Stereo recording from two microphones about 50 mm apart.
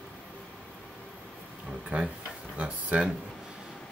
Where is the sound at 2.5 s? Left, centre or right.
Right.